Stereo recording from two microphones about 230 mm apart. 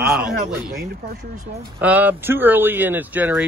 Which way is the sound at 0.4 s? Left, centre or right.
Right.